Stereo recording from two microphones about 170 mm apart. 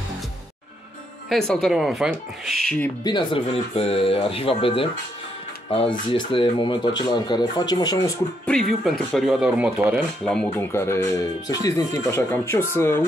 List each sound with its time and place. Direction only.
1.3 s speech: centre (ahead or behind)
3.0 s speech: 25° left (ahead or behind)
8.5 s speech: 5° left (ahead or behind)
10.2 s speech: 5° left (ahead or behind)